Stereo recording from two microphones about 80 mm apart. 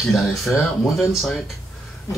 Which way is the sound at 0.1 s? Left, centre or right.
Centre.